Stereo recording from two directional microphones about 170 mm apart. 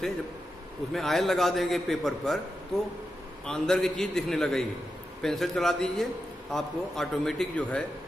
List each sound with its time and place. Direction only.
0.9 s a man's voice: centre (ahead or behind)
3.4 s a man's voice: 5° left (ahead or behind)